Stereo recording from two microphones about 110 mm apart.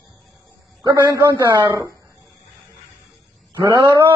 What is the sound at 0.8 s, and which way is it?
A man's voice, 35° right (ahead or behind).